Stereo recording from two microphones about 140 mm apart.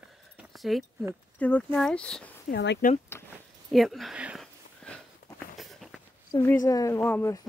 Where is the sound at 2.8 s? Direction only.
80° left.